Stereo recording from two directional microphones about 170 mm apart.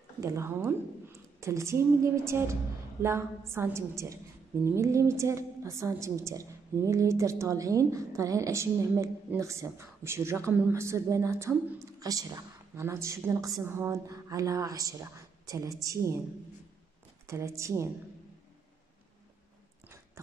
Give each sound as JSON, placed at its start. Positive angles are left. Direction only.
{"t": 0.2, "sound": "a woman's voice", "side_deg": -15}
{"t": 17.3, "sound": "a woman's voice", "side_deg": -15}